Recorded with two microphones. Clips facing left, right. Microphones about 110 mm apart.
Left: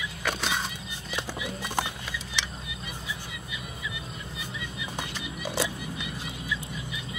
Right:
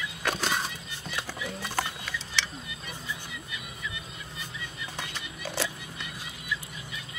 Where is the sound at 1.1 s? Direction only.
15° left (ahead or behind).